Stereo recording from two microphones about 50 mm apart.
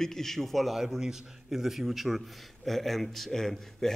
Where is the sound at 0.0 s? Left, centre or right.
Centre.